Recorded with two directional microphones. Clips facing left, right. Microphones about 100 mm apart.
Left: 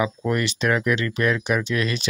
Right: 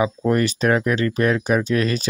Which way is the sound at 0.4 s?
40° right (ahead or behind).